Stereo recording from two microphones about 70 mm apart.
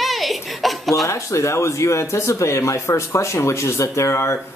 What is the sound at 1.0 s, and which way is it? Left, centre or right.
Speech, left.